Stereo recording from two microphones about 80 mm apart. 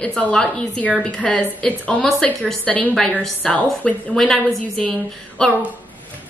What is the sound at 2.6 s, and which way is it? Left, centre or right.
A woman's voice, centre.